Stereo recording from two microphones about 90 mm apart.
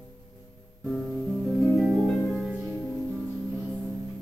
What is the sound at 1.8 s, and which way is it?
Harp, 5° right (ahead or behind).